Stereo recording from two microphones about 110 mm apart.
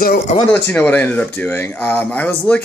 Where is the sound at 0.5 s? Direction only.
15° left (ahead or behind).